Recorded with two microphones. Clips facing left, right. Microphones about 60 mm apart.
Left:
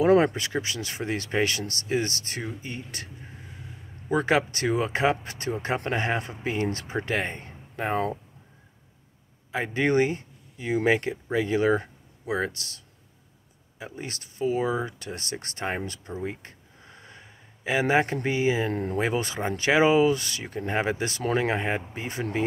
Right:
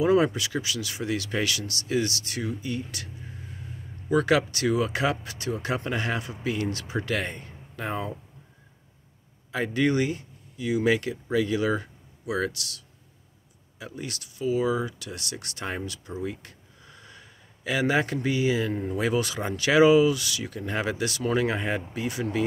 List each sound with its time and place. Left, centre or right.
0.0 s speech: left
4.1 s speech: left
9.5 s speech: left
13.7 s speech: left
16.2 s a sound: left
18.7 s speech: left
18.9 s speech: left